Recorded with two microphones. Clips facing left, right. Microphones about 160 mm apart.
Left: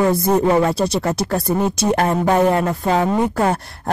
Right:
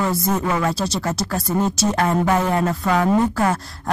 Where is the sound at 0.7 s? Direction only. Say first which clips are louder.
Left 5 dB; 60° left (ahead or behind).